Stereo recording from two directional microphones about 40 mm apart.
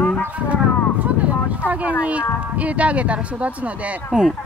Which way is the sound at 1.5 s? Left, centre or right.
Right.